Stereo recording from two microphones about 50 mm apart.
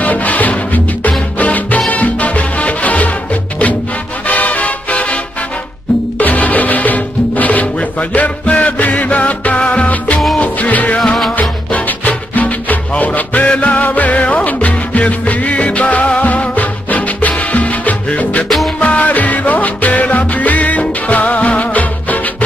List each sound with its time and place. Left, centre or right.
0.0 s music: left
4.3 s music: left
6.1 s music: left